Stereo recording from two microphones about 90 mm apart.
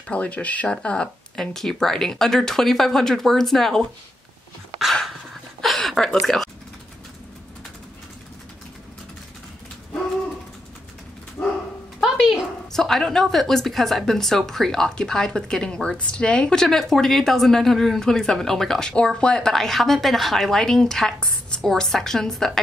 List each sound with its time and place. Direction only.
0.1 s a woman's voice: 15° left (ahead or behind)
4.7 s dog: centre (ahead or behind)
5.6 s a sound: centre (ahead or behind)
6.2 s speech: 5° left (ahead or behind)
11.4 s dog: 20° left (ahead or behind)
12.0 s a woman's voice: centre (ahead or behind)